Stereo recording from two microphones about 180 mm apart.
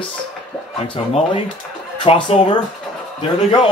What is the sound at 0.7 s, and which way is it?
Speech, 30° left (ahead or behind).